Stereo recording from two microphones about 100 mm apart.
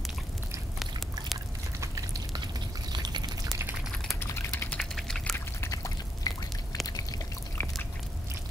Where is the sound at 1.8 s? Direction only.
35° right (ahead or behind).